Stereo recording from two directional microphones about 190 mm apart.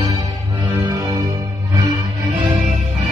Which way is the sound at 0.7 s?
15° right (ahead or behind).